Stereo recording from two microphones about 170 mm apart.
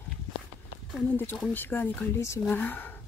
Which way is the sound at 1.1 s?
10° left (ahead or behind).